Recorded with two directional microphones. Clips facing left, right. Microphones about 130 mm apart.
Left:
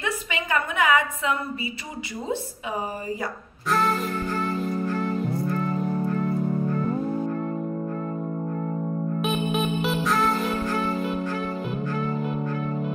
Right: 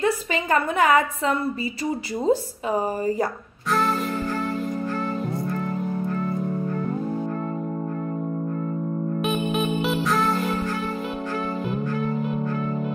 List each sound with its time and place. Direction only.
0.0 s a woman's voice: 40° right (ahead or behind)
3.7 s music: centre (ahead or behind)
9.2 s music: centre (ahead or behind)